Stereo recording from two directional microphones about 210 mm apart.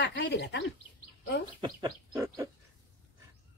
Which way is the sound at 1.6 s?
20° right (ahead or behind).